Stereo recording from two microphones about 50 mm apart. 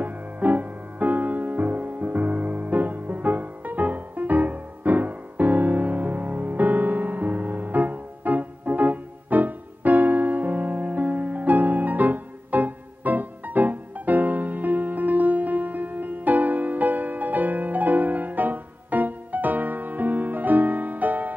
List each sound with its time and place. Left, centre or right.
0.0 s music: right